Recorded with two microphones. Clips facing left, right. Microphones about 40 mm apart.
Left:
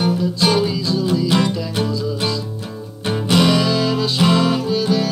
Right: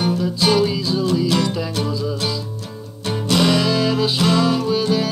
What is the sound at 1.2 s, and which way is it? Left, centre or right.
Music, centre.